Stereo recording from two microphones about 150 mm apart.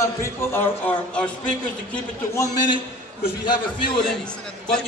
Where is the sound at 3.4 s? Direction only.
30° left (ahead or behind).